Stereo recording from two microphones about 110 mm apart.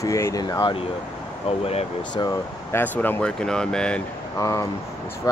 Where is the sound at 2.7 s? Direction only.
15° left (ahead or behind).